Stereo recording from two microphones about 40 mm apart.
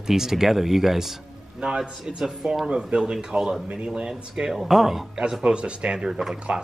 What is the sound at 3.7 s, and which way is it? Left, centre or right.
Speech, right.